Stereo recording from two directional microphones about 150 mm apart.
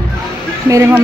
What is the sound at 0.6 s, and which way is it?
Speech, 15° right (ahead or behind).